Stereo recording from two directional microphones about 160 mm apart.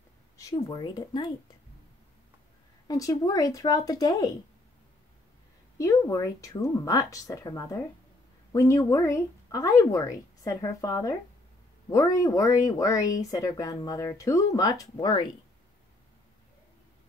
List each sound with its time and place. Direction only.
0.7 s speech: 25° left (ahead or behind)
2.9 s speech: 20° left (ahead or behind)
5.8 s speech: 20° left (ahead or behind)